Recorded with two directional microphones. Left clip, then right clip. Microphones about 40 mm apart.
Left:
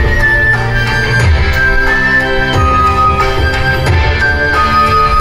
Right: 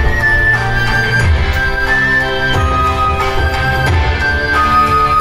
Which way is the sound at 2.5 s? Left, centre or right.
Left.